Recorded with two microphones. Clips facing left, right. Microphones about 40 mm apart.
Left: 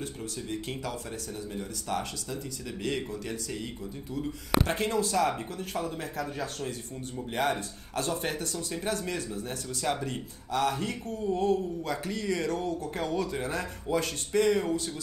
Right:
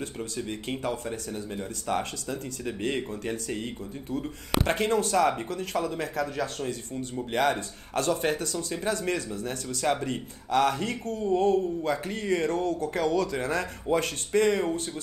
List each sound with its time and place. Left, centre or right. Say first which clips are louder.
0.0 s speech: right 4 dB; right